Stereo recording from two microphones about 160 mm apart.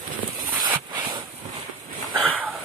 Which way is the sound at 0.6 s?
30° right (ahead or behind).